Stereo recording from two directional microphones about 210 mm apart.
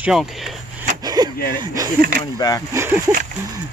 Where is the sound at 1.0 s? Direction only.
20° right (ahead or behind).